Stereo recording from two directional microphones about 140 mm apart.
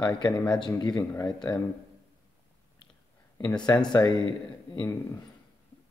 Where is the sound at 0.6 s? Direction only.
25° left (ahead or behind).